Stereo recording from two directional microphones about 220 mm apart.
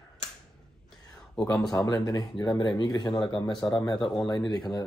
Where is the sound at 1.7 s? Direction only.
15° left (ahead or behind).